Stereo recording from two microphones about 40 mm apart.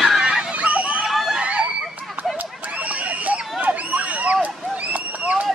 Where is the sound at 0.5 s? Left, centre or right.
Right.